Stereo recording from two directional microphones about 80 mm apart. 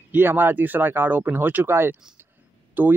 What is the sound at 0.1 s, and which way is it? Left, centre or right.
Speech, right.